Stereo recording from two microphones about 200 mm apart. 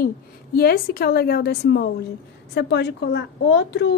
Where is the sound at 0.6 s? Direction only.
50° left (ahead or behind).